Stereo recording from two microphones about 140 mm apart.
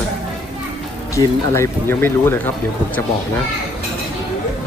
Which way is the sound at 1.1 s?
20° left (ahead or behind).